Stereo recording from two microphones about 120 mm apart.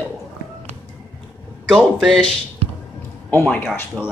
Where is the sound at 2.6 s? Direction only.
55° right (ahead or behind).